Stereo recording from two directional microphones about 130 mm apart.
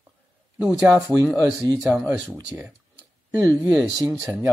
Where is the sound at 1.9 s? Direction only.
10° right (ahead or behind).